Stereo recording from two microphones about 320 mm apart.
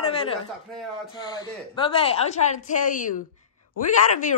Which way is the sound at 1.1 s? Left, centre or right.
Centre.